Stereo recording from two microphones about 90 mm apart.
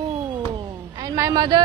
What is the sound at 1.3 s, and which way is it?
Speech, 55° right (ahead or behind).